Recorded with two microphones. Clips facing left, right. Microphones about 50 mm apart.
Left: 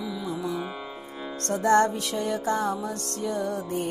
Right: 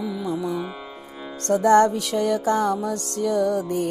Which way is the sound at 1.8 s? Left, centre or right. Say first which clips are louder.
Right 5 dB; right.